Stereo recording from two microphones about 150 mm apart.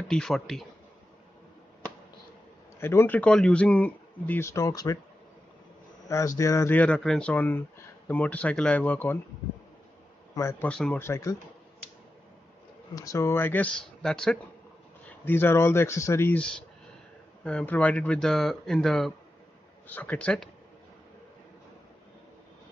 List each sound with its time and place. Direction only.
0.1 s speech: 5° left (ahead or behind)
2.8 s speech: 15° left (ahead or behind)
6.0 s speech: 20° left (ahead or behind)
10.3 s speech: 20° left (ahead or behind)
10.7 s speech: 10° left (ahead or behind)
12.9 s speech: 20° left (ahead or behind); by 20.4 s 5° left (ahead or behind)